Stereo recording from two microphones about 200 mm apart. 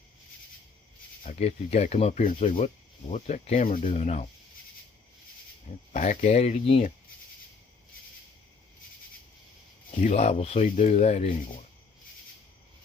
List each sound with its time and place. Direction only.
1.2 s speech: 35° left (ahead or behind)
5.9 s speech: 35° left (ahead or behind)
10.0 s speech: 30° left (ahead or behind)